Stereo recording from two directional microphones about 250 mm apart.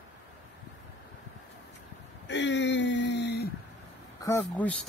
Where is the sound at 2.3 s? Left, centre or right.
Left.